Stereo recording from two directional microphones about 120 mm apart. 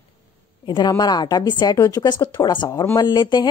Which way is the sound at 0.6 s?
40° left (ahead or behind).